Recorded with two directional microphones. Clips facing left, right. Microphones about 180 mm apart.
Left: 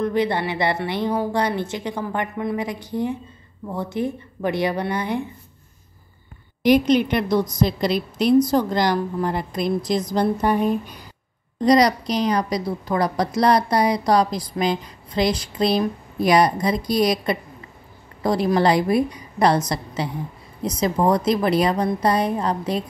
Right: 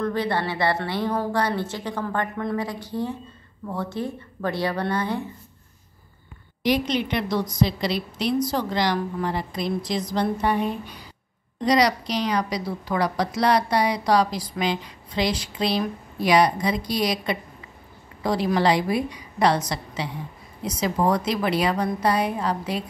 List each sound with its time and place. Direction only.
0.0 s a woman's voice: 20° left (ahead or behind)
6.6 s a woman's voice: 50° left (ahead or behind)